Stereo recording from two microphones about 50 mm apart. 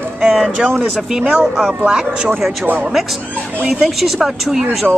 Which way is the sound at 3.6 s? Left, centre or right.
Centre.